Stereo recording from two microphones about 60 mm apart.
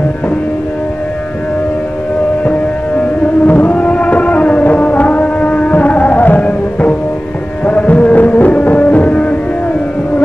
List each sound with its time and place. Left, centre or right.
3.0 s music: left